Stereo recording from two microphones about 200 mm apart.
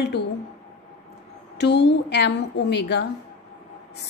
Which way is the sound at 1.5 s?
55° left (ahead or behind).